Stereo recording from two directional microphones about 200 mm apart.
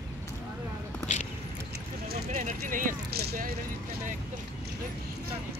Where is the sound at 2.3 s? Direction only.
35° right (ahead or behind).